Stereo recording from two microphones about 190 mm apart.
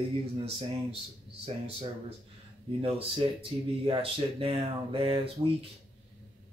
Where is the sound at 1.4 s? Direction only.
30° right (ahead or behind).